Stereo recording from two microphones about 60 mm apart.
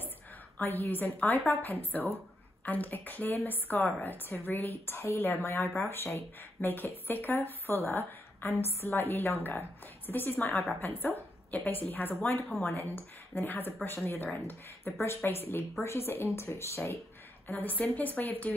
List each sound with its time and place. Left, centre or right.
0.6 s speech: left
17.5 s speech: left